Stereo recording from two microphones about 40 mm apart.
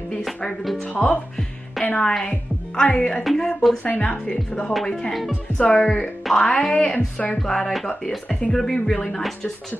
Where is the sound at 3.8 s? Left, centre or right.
Left.